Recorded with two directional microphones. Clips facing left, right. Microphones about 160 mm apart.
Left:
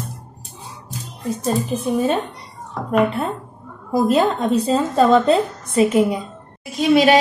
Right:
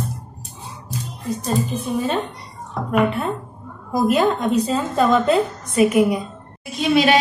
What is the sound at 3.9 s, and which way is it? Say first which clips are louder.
A woman's voice: left 1 dB; 30° left (ahead or behind).